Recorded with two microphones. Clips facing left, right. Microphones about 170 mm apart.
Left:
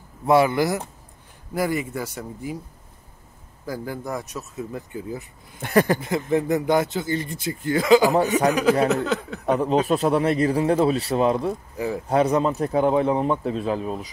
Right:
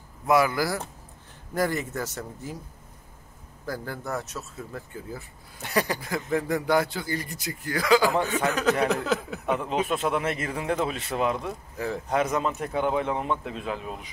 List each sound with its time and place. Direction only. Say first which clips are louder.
0.3 s a man's voice: left 4 dB; 25° left (ahead or behind)
1.5 s speech: left 2 dB; 10° left (ahead or behind)
3.6 s speech: left 3 dB; 10° left (ahead or behind)
5.6 s speech: left 8 dB; 50° left (ahead or behind)
5.9 s a man's voice: left 5 dB; 25° left (ahead or behind)
8.8 s a sound: left 3 dB; centre (ahead or behind)
9.5 s a man's voice: left 6 dB; 35° left (ahead or behind)